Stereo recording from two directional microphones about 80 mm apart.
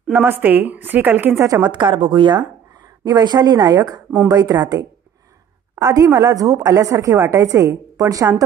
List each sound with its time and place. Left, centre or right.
0.1 s a woman's voice: right
1.3 s a woman's voice: right
1.7 s speech: right
3.1 s a woman's voice: right